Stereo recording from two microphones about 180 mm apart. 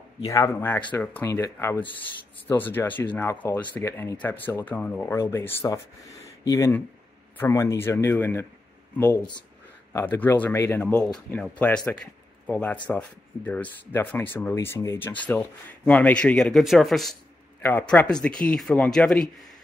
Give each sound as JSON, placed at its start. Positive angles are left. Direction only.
{"t": 0.2, "sound": "speech", "side_deg": 15}
{"t": 6.2, "sound": "a sound", "side_deg": 15}
{"t": 7.3, "sound": "speech", "side_deg": 15}